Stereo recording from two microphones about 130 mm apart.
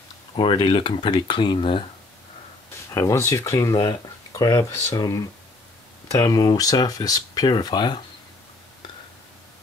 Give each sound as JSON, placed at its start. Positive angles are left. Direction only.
{"t": 0.4, "sound": "speech", "side_deg": 40}
{"t": 2.9, "sound": "speech", "side_deg": 25}